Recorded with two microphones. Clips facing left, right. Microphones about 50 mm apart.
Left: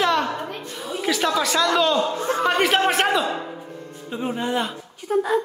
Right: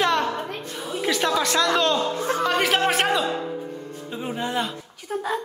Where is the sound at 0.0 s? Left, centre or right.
Centre.